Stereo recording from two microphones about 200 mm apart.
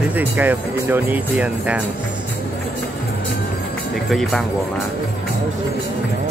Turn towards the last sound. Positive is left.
turn(degrees=0)  # may be behind; listen again after turning